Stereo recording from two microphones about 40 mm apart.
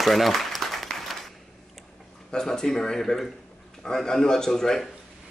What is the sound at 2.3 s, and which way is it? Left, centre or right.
Speech, centre.